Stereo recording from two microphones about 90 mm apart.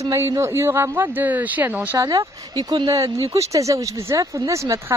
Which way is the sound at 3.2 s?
35° right (ahead or behind).